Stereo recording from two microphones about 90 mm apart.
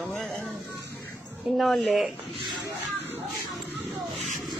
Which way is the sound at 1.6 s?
Centre (ahead or behind).